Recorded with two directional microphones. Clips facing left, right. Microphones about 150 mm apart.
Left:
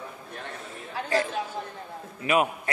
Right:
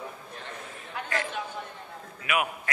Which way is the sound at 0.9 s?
30° left (ahead or behind).